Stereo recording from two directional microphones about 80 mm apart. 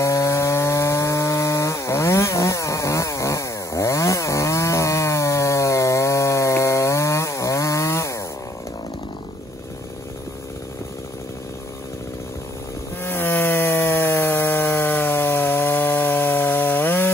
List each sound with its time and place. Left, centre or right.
0.0 s wood: left
13.0 s chainsaw: left